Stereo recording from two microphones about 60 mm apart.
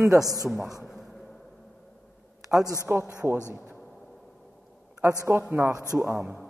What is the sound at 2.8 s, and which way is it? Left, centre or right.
Speech, right.